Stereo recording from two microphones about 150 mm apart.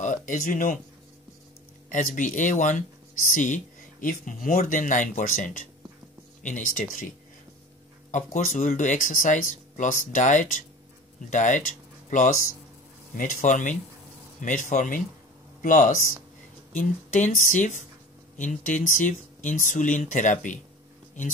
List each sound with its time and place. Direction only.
0.0 s speech: 60° left (ahead or behind)
1.9 s speech: 60° left (ahead or behind)
13.1 s speech: 60° left (ahead or behind)